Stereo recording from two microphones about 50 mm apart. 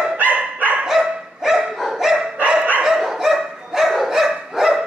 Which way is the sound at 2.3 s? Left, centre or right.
Right.